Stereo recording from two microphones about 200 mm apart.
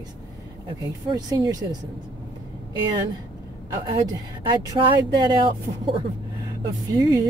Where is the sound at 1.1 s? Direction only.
20° right (ahead or behind).